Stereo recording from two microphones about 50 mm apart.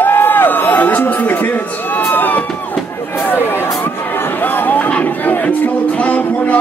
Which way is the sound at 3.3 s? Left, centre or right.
Left.